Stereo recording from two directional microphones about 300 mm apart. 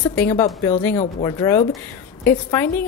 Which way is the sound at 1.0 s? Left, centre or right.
Centre.